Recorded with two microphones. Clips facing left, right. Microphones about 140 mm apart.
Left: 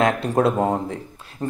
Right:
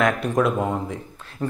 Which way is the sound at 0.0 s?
30° left (ahead or behind).